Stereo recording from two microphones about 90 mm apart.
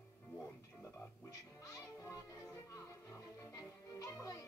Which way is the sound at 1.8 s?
30° left (ahead or behind).